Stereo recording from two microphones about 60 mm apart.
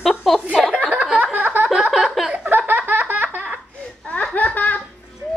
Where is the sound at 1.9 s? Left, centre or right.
Centre.